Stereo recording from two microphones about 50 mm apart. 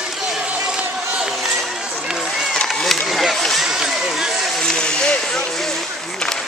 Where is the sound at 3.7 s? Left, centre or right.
Centre.